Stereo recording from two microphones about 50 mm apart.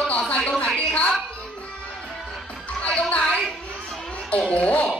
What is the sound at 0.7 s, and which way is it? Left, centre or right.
Music, left.